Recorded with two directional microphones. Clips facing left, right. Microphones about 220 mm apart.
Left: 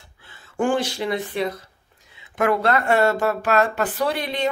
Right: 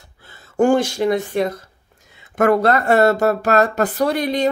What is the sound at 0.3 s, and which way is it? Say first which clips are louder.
Speech: right 6 dB; 40° right (ahead or behind).